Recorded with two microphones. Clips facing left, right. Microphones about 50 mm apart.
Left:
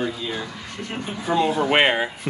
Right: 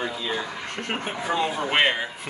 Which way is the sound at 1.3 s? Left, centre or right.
Centre.